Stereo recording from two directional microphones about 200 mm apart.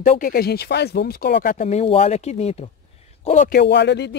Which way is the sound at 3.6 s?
55° left (ahead or behind).